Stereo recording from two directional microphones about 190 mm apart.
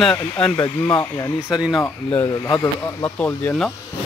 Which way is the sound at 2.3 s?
20° left (ahead or behind).